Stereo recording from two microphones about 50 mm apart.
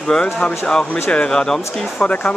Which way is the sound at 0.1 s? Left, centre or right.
Centre.